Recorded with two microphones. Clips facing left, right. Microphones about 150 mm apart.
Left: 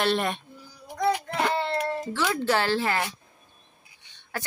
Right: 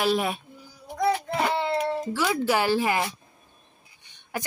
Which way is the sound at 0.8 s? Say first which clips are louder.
Right 1 dB; 5° right (ahead or behind).